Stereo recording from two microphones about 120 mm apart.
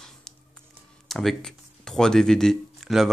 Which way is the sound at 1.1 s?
Centre (ahead or behind).